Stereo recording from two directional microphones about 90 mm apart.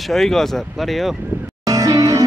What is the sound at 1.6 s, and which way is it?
Music, 40° right (ahead or behind).